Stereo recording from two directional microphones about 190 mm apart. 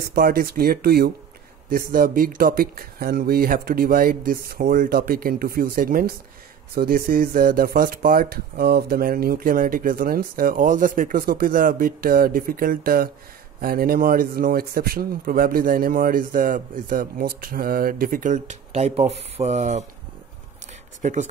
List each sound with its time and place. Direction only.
0.0 s speech: 55° right (ahead or behind); by 19.8 s 40° right (ahead or behind)
21.0 s speech: 40° right (ahead or behind)